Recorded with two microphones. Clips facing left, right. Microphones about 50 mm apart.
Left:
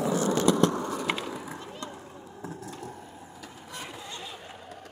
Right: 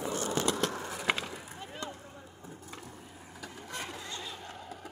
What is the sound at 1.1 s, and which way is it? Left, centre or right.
Skateboard, centre.